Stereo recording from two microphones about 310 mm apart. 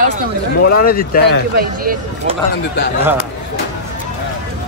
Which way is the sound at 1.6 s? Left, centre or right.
Right.